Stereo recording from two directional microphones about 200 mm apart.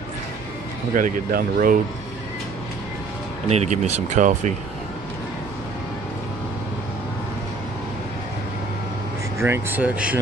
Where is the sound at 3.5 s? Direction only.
35° right (ahead or behind).